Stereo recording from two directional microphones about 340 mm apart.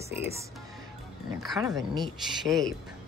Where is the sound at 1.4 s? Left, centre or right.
Centre.